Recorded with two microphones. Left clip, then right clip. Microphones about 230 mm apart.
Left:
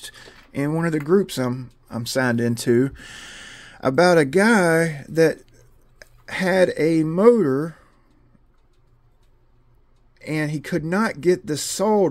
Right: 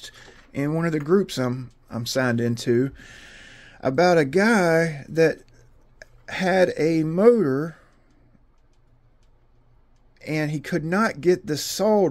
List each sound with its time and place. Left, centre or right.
0.0 s speech: centre
10.1 s speech: centre